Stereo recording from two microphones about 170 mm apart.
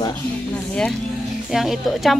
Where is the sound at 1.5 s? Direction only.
Centre (ahead or behind).